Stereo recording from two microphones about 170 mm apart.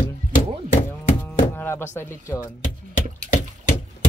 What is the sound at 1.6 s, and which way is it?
Speech, 15° left (ahead or behind).